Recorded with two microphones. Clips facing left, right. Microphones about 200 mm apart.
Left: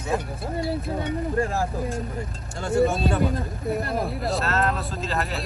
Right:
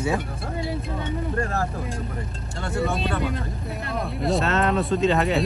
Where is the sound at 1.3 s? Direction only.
15° left (ahead or behind).